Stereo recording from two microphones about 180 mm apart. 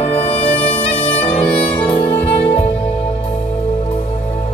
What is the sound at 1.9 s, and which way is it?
Saxophone, 20° left (ahead or behind).